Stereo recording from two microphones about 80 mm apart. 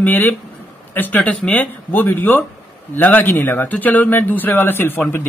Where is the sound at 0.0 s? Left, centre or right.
Left.